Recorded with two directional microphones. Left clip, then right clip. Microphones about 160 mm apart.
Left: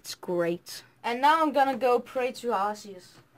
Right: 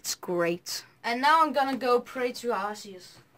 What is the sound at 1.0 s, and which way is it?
A woman's voice, 35° left (ahead or behind).